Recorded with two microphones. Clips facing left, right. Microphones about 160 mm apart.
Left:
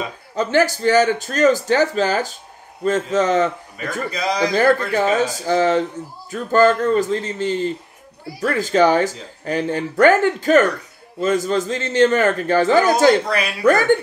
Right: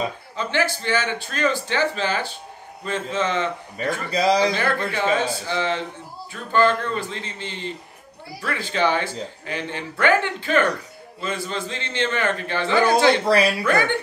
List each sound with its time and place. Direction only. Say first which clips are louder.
0.4 s speech: left 7 dB; 40° left (ahead or behind)
3.7 s a man's voice: right 1 dB; 30° right (ahead or behind)
4.6 s speech: left 8 dB; 40° left (ahead or behind)